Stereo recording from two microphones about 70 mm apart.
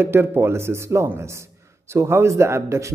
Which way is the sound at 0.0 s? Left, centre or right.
Right.